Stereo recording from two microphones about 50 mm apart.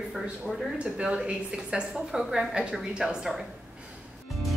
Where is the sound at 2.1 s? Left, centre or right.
Centre.